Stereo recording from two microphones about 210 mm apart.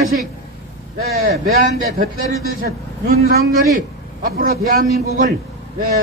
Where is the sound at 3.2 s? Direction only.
45° right (ahead or behind).